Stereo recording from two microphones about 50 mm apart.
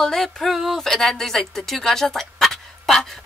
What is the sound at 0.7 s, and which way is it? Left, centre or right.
Speech, centre.